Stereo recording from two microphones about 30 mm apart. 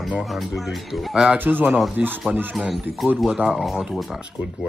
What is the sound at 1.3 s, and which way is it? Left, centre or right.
Speech, right.